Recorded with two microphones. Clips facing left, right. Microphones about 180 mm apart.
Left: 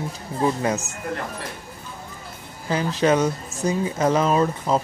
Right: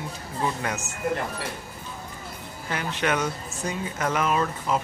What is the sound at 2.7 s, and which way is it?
Speech, 30° left (ahead or behind).